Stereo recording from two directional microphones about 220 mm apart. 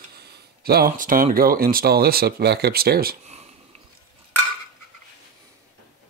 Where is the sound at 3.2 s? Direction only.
30° right (ahead or behind).